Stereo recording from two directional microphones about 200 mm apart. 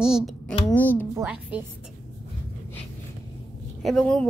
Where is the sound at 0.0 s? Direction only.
Centre (ahead or behind).